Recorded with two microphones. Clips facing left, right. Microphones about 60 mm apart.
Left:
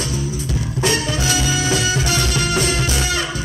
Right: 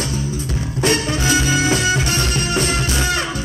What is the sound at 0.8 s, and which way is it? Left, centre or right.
Music, right.